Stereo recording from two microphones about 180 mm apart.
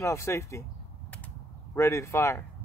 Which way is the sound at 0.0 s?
15° left (ahead or behind).